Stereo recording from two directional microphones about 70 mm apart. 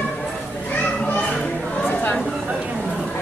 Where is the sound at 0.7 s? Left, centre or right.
Left.